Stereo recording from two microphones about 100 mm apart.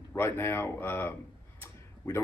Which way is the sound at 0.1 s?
25° left (ahead or behind).